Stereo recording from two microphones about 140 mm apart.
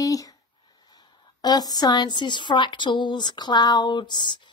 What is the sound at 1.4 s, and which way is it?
Speech, 30° left (ahead or behind).